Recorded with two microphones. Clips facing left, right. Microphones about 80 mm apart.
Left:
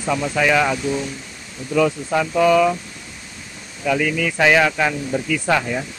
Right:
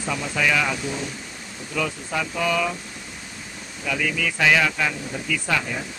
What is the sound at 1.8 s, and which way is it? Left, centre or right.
Speech, left.